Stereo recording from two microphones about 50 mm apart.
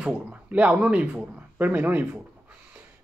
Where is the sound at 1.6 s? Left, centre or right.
Right.